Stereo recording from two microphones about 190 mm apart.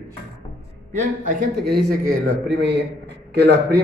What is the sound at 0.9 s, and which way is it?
Speech, 50° right (ahead or behind).